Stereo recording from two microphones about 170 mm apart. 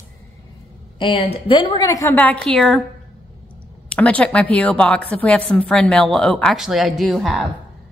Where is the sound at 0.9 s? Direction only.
30° left (ahead or behind); by 2.8 s 5° left (ahead or behind).